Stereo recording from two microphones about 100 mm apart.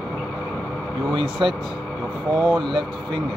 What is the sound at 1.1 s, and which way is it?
Speech, 55° right (ahead or behind).